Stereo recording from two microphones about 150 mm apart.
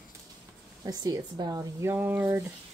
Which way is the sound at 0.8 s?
25° right (ahead or behind).